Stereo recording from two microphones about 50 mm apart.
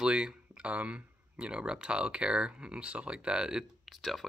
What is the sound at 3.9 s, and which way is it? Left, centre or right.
Speech, centre.